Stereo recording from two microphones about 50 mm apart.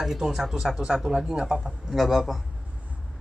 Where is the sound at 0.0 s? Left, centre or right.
Centre.